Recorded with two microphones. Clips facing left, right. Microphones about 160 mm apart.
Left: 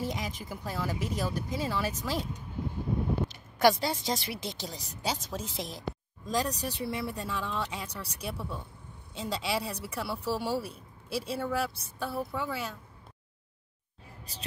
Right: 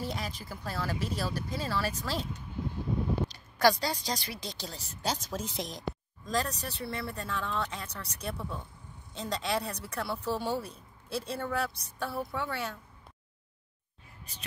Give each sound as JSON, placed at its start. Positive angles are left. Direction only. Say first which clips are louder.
{"t": 0.0, "sound": "a woman's voice", "louder": "left 2 dB", "side_deg": 15}
{"t": 3.3, "sound": "a sound", "louder": "left 2 dB", "side_deg": 20}
{"t": 3.8, "sound": "speech", "louder": "left 2 dB", "side_deg": 20}
{"t": 5.1, "sound": "a woman's voice", "louder": "right 1 dB", "side_deg": 0}